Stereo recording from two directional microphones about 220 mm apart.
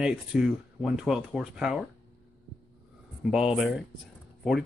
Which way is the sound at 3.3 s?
Centre (ahead or behind).